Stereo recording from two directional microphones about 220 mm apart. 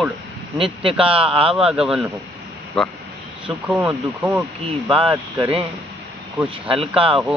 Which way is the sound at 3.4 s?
10° right (ahead or behind).